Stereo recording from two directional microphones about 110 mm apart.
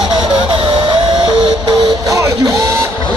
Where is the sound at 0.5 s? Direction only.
45° right (ahead or behind).